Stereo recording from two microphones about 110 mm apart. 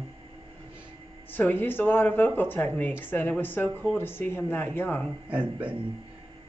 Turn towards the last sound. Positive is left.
turn(degrees=-10)  # may be behind; listen again after turning